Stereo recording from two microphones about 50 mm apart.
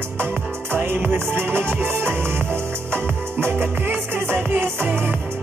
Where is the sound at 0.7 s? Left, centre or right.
Right.